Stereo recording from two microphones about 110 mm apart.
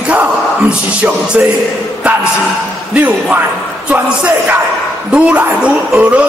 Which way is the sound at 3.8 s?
10° right (ahead or behind).